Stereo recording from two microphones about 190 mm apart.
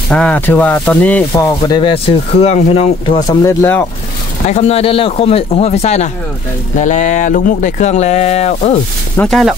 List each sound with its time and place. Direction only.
0.1 s speech: 5° left (ahead or behind); by 3.3 s 30° left (ahead or behind)
3.3 s speech: 15° left (ahead or behind)
4.5 s speech: 35° left (ahead or behind)
9.1 s speech: 5° left (ahead or behind)